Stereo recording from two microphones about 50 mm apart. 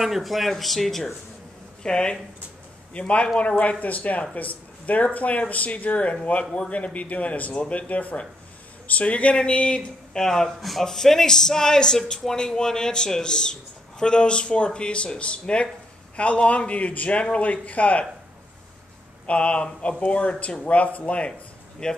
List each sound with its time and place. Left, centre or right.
0.0 s speech: centre
1.8 s a man's voice: centre
19.2 s speech: left
21.3 s a sound: centre